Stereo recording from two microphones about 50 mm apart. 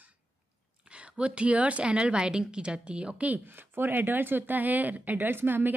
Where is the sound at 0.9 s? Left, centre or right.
Right.